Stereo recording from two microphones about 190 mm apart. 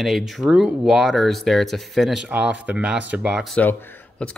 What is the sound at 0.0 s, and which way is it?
Speech, centre (ahead or behind).